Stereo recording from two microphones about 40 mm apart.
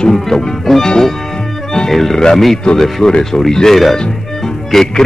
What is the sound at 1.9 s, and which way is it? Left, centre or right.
A man's voice, centre.